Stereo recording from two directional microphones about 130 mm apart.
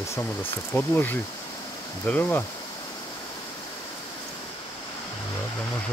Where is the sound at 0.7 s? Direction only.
15° left (ahead or behind).